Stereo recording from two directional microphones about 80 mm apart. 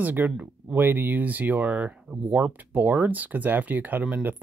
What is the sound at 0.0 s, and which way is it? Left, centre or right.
Speech, right.